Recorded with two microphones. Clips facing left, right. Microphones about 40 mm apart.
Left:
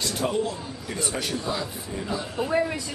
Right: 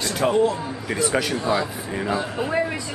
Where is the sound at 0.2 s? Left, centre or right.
Right.